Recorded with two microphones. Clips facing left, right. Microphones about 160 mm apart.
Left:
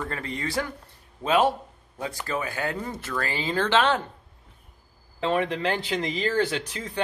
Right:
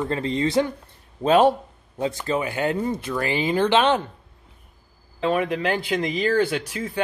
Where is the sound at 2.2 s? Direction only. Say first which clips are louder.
Right 5 dB; 20° right (ahead or behind).